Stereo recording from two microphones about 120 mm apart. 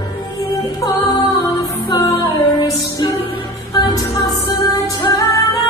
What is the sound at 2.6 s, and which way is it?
Music, 30° left (ahead or behind).